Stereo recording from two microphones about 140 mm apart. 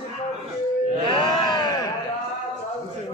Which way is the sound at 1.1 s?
35° left (ahead or behind).